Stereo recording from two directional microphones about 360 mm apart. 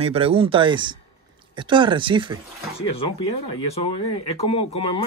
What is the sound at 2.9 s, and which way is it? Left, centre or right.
Speech, left.